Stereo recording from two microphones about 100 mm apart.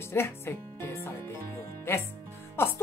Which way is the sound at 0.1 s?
25° left (ahead or behind).